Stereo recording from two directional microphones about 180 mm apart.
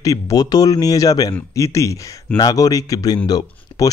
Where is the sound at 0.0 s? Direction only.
20° left (ahead or behind).